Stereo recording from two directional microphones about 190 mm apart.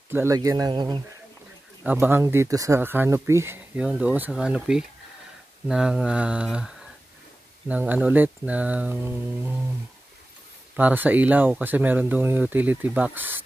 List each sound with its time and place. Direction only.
0.1 s speech: 15° right (ahead or behind)
1.8 s speech: 10° right (ahead or behind)
10.8 s speech: 10° right (ahead or behind)